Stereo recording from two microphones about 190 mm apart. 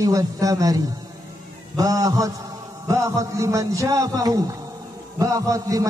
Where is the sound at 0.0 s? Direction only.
15° right (ahead or behind).